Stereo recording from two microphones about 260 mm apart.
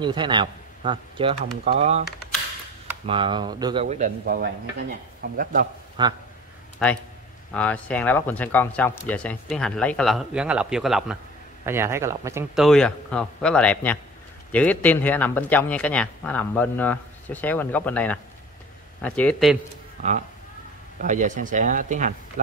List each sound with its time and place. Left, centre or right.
0.0 s a man's voice: centre
3.1 s speech: centre
3.8 s speech: right
6.0 s speech: centre
6.8 s speech: centre
12.6 s speech: centre
21.0 s speech: right